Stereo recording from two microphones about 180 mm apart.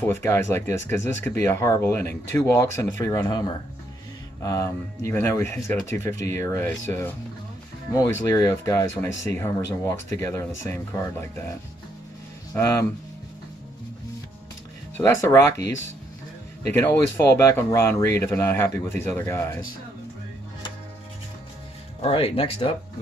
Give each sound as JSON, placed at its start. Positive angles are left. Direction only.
{"t": 0.0, "sound": "speech", "side_deg": 15}
{"t": 12.5, "sound": "speech", "side_deg": 15}
{"t": 15.0, "sound": "speech", "side_deg": 15}
{"t": 16.8, "sound": "speech", "side_deg": 15}
{"t": 22.0, "sound": "speech", "side_deg": 30}